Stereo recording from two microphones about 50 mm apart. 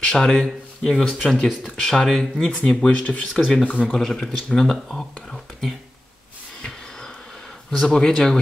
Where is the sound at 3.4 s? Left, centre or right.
Centre.